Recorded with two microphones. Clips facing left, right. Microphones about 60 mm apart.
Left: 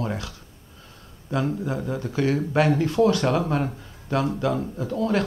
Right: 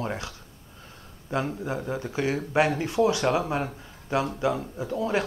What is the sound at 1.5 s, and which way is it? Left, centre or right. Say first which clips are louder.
Speech: left 3 dB; right.